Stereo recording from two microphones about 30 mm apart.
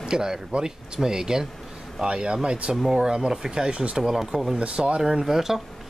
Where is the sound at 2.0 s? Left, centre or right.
Right; by 4.5 s centre.